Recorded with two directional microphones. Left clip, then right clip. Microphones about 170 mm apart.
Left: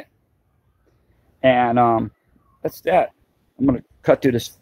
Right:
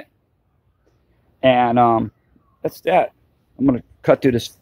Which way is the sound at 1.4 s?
15° right (ahead or behind).